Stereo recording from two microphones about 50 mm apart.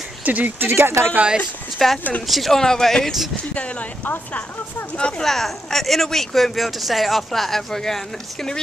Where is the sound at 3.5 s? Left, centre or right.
Left.